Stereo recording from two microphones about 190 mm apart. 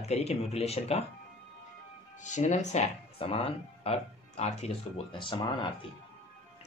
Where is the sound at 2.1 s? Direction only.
40° left (ahead or behind).